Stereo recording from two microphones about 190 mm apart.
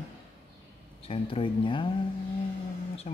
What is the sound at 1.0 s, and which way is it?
Speech, 30° left (ahead or behind).